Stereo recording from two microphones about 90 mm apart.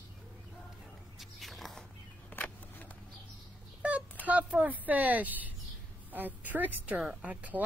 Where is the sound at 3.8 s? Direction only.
15° right (ahead or behind).